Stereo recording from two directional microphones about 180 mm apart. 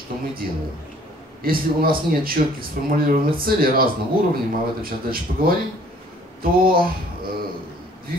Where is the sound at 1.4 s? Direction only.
55° right (ahead or behind).